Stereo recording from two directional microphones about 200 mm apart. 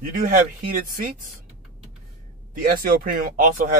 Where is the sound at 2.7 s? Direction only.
45° right (ahead or behind).